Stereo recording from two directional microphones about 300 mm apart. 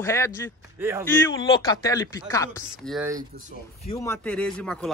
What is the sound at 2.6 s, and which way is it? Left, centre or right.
Speech, centre.